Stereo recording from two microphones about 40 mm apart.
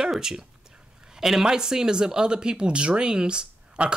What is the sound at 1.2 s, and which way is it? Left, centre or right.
Speech, centre.